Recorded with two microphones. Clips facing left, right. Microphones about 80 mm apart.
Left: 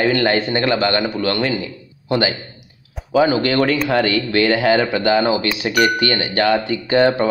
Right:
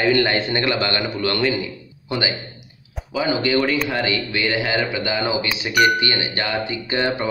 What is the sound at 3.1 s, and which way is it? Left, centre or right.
Speech, left.